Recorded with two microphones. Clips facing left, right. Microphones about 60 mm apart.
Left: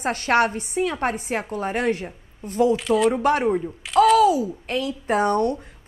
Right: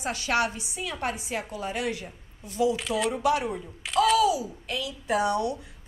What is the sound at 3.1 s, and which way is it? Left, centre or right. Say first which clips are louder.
A woman's voice: left 6 dB; left.